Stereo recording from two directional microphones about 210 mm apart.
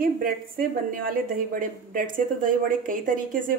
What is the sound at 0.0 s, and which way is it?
A woman's voice, 40° right (ahead or behind).